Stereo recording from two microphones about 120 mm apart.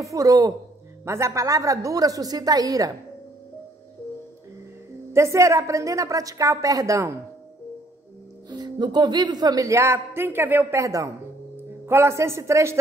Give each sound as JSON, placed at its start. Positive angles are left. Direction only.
{"t": 0.0, "sound": "a woman's voice", "side_deg": -25}
{"t": 5.1, "sound": "a woman's voice", "side_deg": -25}
{"t": 8.5, "sound": "speech", "side_deg": -40}
{"t": 10.8, "sound": "a woman's voice", "side_deg": -25}